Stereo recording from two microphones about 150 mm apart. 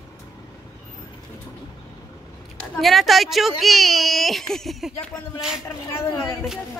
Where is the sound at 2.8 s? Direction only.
Centre (ahead or behind).